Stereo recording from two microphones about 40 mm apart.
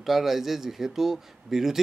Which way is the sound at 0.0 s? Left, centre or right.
Centre.